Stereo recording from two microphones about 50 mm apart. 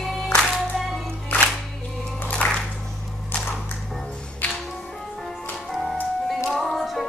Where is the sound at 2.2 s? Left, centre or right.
Left.